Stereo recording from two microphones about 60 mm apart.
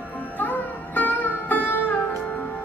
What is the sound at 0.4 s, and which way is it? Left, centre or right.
Music, left.